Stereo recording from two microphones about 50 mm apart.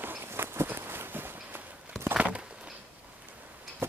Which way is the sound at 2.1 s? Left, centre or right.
Right.